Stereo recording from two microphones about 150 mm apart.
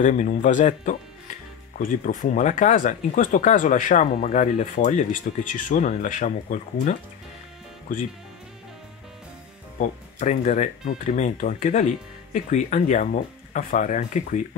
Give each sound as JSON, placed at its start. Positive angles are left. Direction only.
{"t": 0.0, "sound": "speech", "side_deg": 55}
{"t": 9.8, "sound": "speech", "side_deg": 55}